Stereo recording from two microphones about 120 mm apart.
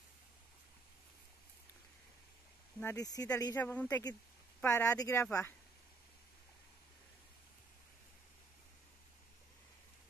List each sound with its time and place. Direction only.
2.8 s speech: 25° left (ahead or behind)
3.5 s speech: 15° left (ahead or behind)
5.2 s speech: 20° left (ahead or behind)